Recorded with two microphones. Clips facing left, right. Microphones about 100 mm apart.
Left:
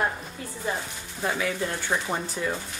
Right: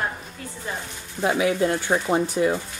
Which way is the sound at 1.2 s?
15° right (ahead or behind).